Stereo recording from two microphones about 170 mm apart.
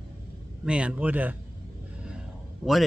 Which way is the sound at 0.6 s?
5° right (ahead or behind).